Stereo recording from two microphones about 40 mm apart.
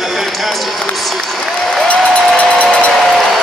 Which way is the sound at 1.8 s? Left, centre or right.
Left.